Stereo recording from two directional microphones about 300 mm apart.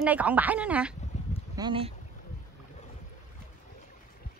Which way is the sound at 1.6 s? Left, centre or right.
Centre.